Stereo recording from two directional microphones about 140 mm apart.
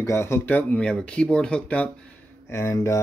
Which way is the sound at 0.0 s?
20° left (ahead or behind).